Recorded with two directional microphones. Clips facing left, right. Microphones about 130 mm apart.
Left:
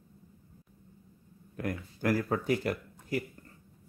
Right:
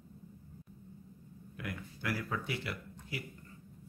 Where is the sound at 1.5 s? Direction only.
45° left (ahead or behind).